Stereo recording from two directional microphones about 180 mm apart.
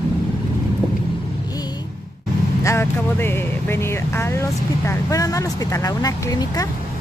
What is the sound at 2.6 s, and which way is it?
Speech, 15° left (ahead or behind).